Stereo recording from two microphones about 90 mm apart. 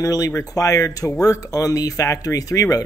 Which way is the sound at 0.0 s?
40° left (ahead or behind).